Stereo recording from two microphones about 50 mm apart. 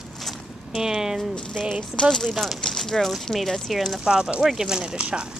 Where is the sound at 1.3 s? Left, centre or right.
Centre.